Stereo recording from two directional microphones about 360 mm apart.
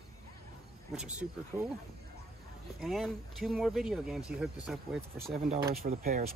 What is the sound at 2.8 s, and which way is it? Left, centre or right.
Speech, centre.